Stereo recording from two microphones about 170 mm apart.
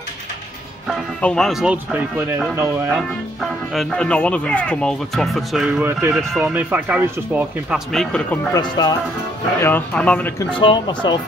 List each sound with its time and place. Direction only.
0.8 s speech: centre (ahead or behind); by 3.0 s 15° right (ahead or behind)
3.7 s speech: 5° left (ahead or behind)
7.9 s speech: 5° left (ahead or behind)
8.5 s speech: 25° left (ahead or behind)
9.6 s speech: 10° left (ahead or behind)
10.6 s speech: 30° left (ahead or behind)